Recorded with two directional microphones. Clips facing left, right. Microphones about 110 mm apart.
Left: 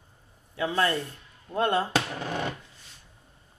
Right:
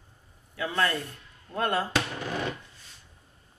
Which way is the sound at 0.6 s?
30° left (ahead or behind).